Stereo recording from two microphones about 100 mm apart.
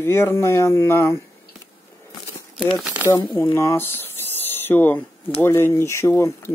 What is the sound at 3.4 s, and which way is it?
Speech, 25° left (ahead or behind).